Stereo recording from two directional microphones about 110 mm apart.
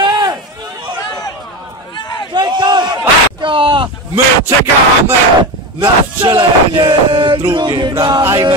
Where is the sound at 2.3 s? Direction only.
45° right (ahead or behind).